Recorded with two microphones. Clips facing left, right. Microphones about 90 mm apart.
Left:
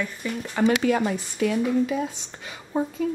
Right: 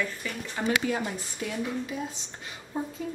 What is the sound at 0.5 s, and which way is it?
Speech, 85° left.